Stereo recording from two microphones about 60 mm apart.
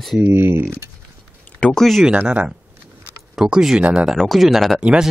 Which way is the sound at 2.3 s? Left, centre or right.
Centre.